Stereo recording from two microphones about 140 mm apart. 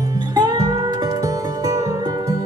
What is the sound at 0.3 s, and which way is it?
Music, 30° right (ahead or behind).